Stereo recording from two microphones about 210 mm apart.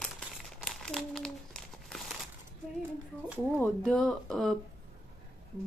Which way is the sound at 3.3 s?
Centre (ahead or behind).